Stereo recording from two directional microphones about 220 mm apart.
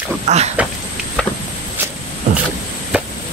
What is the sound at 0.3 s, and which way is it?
Speech, 30° right (ahead or behind).